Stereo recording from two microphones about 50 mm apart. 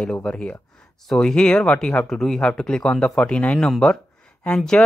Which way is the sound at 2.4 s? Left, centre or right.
Centre.